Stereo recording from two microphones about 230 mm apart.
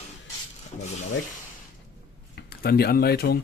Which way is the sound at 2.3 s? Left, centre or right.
Left.